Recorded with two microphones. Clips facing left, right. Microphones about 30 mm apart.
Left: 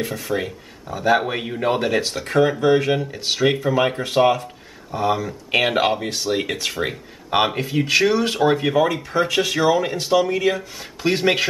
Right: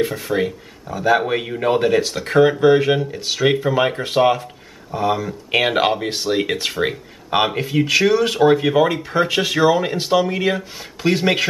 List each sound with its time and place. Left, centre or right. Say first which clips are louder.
0.0 s speech: right 4 dB; centre
0.8 s speech: right 2 dB; centre
2.1 s speech: right 3 dB; centre
3.3 s speech: right 2 dB; centre
3.6 s speech: right 1 dB; centre
4.9 s speech: right 1 dB; centre
5.2 s speech: right 1 dB; centre
6.0 s speech: right 2 dB; right
6.7 s speech: right 4 dB; centre
8.7 s speech: right 2 dB; centre
11.1 s speech: right 1 dB; centre